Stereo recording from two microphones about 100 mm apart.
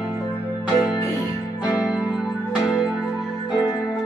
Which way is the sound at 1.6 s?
5° right (ahead or behind).